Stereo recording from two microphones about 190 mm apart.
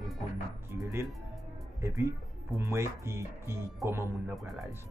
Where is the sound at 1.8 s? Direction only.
15° right (ahead or behind).